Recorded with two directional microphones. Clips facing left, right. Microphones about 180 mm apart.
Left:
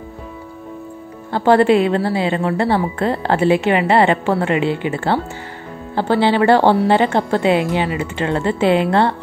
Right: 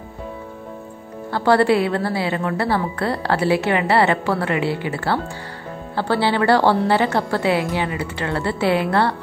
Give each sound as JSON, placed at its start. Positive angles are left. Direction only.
{"t": 1.3, "sound": "a woman's voice", "side_deg": 20}